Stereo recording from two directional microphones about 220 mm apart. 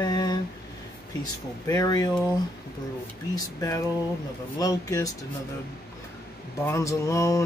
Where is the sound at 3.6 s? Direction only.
15° left (ahead or behind).